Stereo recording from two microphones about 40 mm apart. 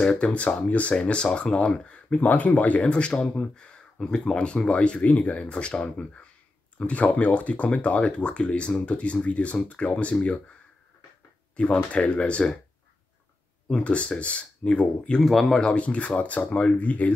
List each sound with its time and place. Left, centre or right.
0.0 s speech: left
0.9 s speech: left
2.1 s speech: left
2.9 s speech: left
5.0 s speech: left
5.4 s speech: left
8.0 s speech: left
11.5 s speech: left
13.8 s speech: left
15.2 s speech: centre
15.6 s speech: left
16.7 s speech: left